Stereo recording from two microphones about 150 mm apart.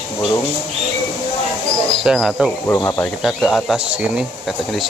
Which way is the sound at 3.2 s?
Centre (ahead or behind).